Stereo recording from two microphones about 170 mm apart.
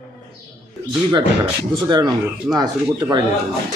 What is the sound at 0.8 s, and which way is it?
Speech, 25° right (ahead or behind).